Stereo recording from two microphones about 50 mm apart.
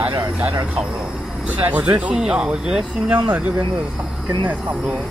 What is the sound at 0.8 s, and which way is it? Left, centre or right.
Speech, centre.